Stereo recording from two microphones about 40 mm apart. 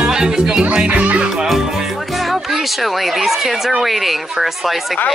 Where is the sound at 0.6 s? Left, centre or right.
Right.